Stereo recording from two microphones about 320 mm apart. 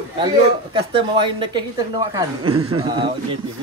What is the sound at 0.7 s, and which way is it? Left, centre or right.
A woman's voice, centre.